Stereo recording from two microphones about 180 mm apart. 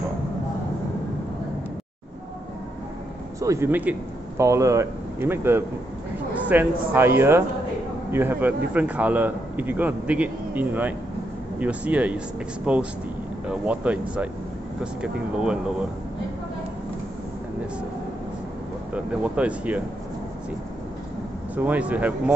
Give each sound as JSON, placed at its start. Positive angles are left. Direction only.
{"t": 3.3, "sound": "a man's voice", "side_deg": -15}
{"t": 18.9, "sound": "a man's voice", "side_deg": -5}
{"t": 21.5, "sound": "a man's voice", "side_deg": -10}